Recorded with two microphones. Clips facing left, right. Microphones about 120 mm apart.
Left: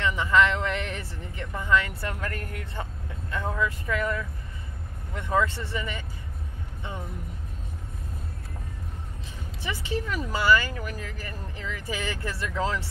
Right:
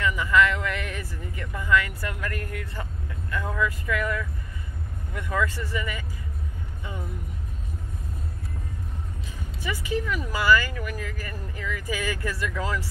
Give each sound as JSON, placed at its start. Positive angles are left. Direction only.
{"t": 0.0, "sound": "a sound", "side_deg": 30}
{"t": 5.1, "sound": "speech", "side_deg": 30}
{"t": 9.6, "sound": "speech", "side_deg": 30}